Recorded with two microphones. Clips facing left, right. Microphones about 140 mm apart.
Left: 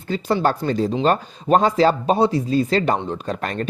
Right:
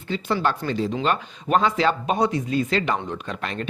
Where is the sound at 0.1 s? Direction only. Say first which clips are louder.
Left 4 dB; 40° left (ahead or behind).